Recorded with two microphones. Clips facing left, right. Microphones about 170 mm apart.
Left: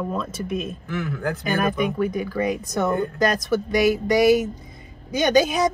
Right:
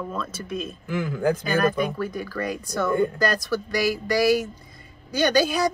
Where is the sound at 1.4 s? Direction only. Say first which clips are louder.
Even; 20° left (ahead or behind).